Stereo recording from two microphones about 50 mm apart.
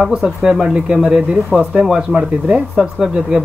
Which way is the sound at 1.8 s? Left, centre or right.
Centre.